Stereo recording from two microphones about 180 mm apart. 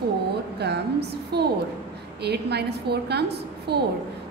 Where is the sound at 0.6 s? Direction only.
65° right (ahead or behind).